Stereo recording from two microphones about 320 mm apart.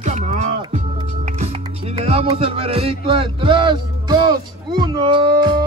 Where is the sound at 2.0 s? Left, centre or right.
Centre.